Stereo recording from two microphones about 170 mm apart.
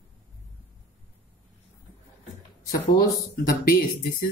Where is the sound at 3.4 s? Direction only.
60° left (ahead or behind).